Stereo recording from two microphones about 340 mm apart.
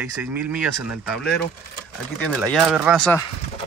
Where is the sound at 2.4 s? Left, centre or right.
Centre.